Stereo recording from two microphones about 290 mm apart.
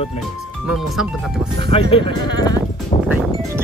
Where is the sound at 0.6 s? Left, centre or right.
Centre.